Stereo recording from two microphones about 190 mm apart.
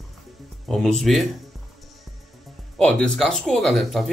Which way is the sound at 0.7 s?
Centre (ahead or behind).